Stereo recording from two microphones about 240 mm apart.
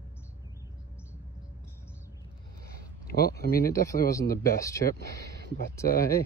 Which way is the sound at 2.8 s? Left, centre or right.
Left.